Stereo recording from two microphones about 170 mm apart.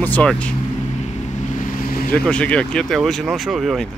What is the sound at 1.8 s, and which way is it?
Vehicle, 60° left (ahead or behind).